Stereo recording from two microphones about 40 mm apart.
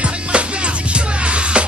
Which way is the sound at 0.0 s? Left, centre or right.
Right.